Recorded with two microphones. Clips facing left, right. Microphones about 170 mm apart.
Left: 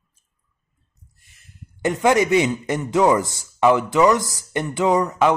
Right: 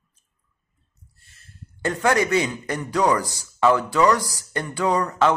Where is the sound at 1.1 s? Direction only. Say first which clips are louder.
Right 1 dB; 15° left (ahead or behind).